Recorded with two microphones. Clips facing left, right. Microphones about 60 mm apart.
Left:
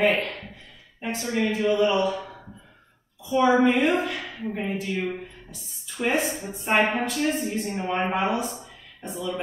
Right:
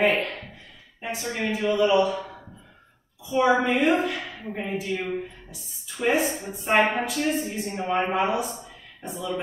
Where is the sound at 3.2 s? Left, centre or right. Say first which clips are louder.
Left 1 dB; centre.